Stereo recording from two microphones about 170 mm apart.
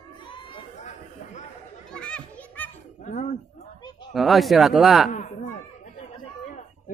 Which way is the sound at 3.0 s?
45° left (ahead or behind).